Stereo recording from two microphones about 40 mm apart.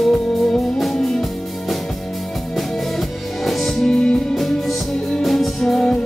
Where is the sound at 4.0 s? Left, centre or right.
Left.